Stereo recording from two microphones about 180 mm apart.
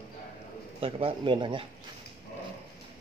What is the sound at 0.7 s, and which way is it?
Speech, 30° right (ahead or behind).